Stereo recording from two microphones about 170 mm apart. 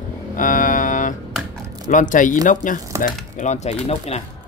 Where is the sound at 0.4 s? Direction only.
50° left (ahead or behind).